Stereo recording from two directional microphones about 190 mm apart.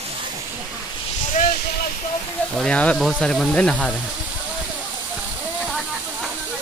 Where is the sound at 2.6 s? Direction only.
5° left (ahead or behind).